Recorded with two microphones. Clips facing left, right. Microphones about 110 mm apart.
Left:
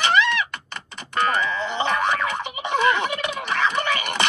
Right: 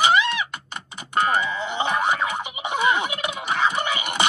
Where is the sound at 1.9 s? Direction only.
10° right (ahead or behind).